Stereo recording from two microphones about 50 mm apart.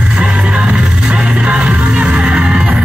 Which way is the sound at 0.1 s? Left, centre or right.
Centre.